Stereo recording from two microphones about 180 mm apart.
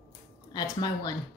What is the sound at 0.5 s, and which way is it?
Speech, 20° left (ahead or behind).